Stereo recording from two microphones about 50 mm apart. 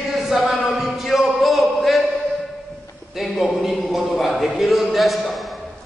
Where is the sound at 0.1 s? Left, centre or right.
Centre.